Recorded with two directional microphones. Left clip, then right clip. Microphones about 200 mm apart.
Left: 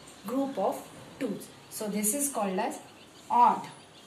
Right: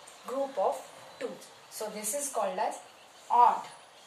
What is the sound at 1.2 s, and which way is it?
A woman's voice, 15° right (ahead or behind).